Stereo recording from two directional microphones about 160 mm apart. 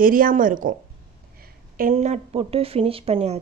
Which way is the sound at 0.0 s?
60° right (ahead or behind).